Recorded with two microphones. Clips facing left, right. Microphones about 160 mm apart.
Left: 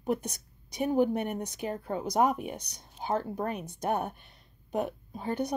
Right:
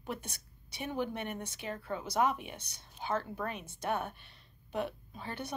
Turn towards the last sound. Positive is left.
turn(degrees=40)  # may be behind; listen again after turning